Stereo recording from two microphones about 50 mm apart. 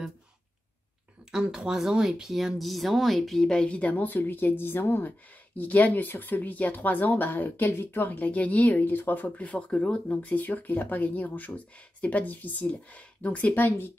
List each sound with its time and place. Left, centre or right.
1.5 s speech: centre
3.4 s speech: centre
3.9 s speech: left
5.6 s speech: left